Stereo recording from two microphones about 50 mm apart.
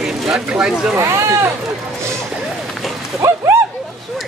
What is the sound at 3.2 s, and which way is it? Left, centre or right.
Speech, right.